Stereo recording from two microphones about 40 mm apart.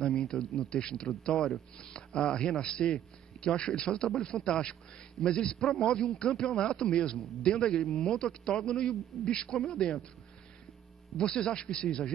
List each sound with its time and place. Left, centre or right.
0.2 s speech: centre
11.1 s speech: left